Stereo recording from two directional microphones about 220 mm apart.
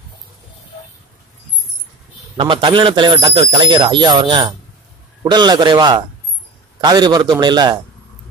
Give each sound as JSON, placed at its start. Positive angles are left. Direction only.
{"t": 2.3, "sound": "a man's voice", "side_deg": -20}